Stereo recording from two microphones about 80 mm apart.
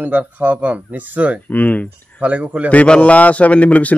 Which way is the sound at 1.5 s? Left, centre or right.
Centre.